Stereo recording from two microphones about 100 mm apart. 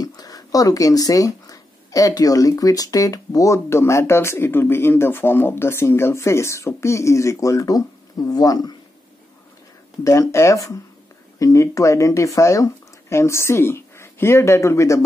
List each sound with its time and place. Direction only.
0.0 s speech: 40° left (ahead or behind)
10.0 s speech: 30° left (ahead or behind)